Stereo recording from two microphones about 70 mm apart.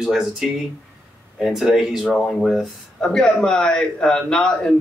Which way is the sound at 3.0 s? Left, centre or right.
Centre.